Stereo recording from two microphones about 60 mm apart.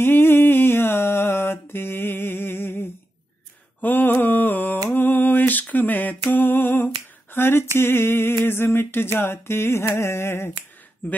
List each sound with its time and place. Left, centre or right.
0.0 s music: left
3.8 s mantra: left
6.2 s a sound: left
11.0 s speech: left